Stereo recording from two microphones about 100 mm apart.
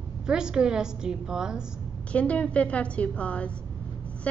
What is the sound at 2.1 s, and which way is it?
A woman's voice, 10° left (ahead or behind).